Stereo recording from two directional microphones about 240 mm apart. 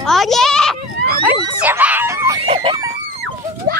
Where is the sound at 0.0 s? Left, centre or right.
Centre.